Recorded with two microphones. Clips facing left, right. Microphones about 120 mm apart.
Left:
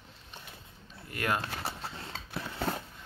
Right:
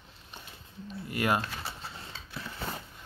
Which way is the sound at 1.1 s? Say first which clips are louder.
Right 3 dB; 15° right (ahead or behind).